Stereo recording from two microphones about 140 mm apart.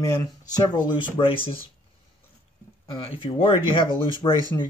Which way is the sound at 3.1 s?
40° left (ahead or behind).